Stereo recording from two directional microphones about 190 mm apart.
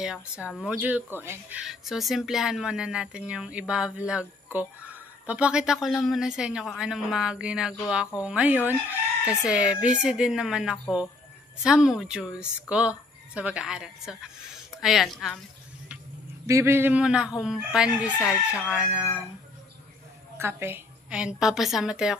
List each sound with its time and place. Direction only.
0.0 s speech: 5° right (ahead or behind)
16.4 s speech: 15° right (ahead or behind)
20.3 s speech: 10° right (ahead or behind)